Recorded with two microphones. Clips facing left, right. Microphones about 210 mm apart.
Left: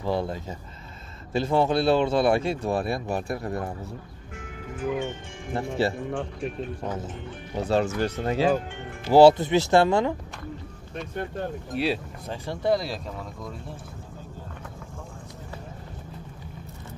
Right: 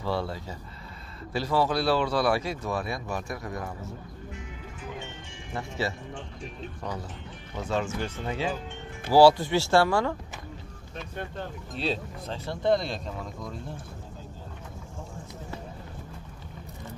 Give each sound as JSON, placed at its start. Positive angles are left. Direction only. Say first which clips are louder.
{"t": 0.0, "sound": "speech", "louder": "left 3 dB", "side_deg": 20}
{"t": 4.9, "sound": "speech", "louder": "left 10 dB", "side_deg": 50}
{"t": 6.8, "sound": "speech", "louder": "left 1 dB", "side_deg": 20}
{"t": 7.5, "sound": "speech", "louder": "left 6 dB", "side_deg": 35}
{"t": 9.1, "sound": "speech", "louder": "left 3 dB", "side_deg": 20}
{"t": 11.7, "sound": "speech", "louder": "left 3 dB", "side_deg": 10}